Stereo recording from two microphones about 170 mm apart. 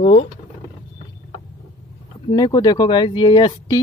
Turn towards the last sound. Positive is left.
turn(degrees=25)  # may be behind; listen again after turning